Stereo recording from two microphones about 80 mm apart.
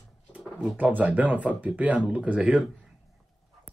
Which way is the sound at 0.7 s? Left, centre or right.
Centre.